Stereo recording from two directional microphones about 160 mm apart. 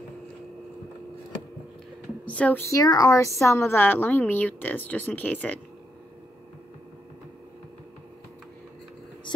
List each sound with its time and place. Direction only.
2.2 s speech: 10° left (ahead or behind)
2.7 s a woman's voice: 25° left (ahead or behind); by 5.6 s 10° left (ahead or behind)